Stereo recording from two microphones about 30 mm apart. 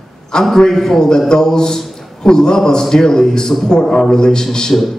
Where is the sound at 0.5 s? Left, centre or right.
Centre.